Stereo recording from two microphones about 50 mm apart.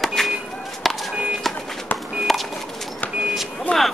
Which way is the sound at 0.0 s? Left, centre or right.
Centre.